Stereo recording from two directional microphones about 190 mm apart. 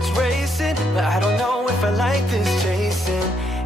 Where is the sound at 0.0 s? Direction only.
Centre (ahead or behind).